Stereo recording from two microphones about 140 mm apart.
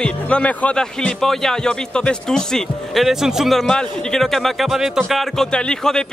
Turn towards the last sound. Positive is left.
turn(degrees=5)  # may be behind; listen again after turning